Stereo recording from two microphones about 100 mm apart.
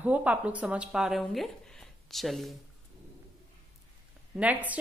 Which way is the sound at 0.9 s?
Centre (ahead or behind).